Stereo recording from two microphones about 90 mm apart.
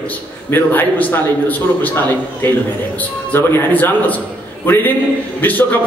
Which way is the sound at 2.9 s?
20° left (ahead or behind).